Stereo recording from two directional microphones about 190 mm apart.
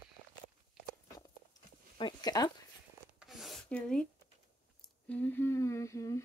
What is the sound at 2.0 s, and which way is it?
Speech, 20° left (ahead or behind).